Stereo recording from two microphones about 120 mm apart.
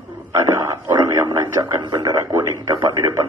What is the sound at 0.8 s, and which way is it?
A man's voice, 30° right (ahead or behind).